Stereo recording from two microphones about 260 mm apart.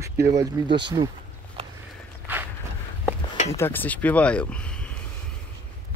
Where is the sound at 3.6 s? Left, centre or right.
Centre.